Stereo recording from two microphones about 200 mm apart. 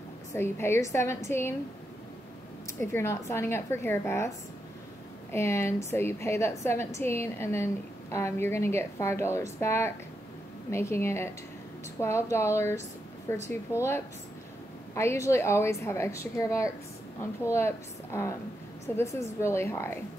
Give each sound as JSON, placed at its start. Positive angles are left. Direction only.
{"t": 0.3, "sound": "a woman's voice", "side_deg": 10}
{"t": 2.9, "sound": "a woman's voice", "side_deg": 15}
{"t": 5.3, "sound": "a woman's voice", "side_deg": 15}